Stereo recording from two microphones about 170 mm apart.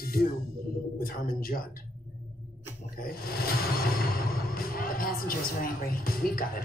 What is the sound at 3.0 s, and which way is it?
Speech, 60° left (ahead or behind).